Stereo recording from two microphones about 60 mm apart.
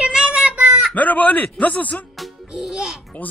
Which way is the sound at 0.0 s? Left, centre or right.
Centre.